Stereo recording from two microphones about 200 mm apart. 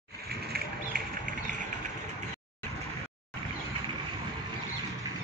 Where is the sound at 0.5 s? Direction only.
50° right (ahead or behind).